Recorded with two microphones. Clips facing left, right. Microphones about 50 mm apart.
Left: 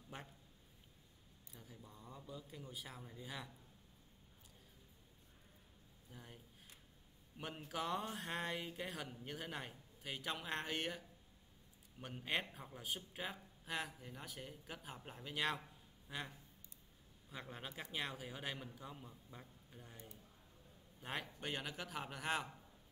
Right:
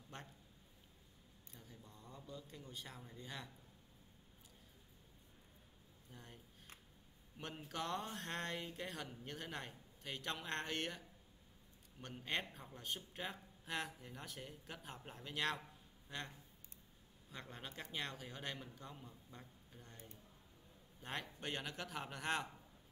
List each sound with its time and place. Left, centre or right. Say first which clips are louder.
0.1 s a man's voice: left 1 dB; centre
1.5 s speech: left 2 dB; centre
6.1 s speech: left 1 dB; centre
21.0 s speech: left 1 dB; centre